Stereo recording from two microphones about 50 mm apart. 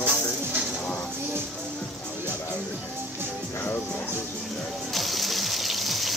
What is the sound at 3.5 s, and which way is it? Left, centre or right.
Speech, left.